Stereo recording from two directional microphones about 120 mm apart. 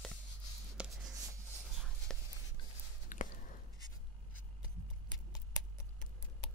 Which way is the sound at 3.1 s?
90° left.